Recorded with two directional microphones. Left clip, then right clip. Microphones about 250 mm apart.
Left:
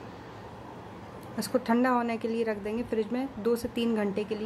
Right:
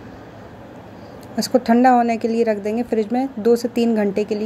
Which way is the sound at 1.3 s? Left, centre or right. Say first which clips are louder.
Right 11 dB; centre.